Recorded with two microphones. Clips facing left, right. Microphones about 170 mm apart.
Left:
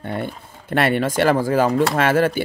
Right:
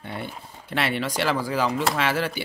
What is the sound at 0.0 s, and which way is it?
Speech, 50° left (ahead or behind).